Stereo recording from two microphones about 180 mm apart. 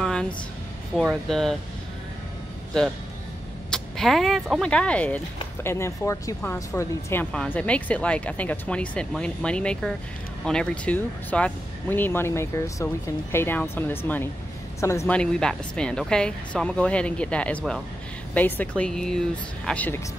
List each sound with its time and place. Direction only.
0.0 s a sound: 5° left (ahead or behind)
0.9 s a woman's voice: centre (ahead or behind)
3.7 s a woman's voice: centre (ahead or behind)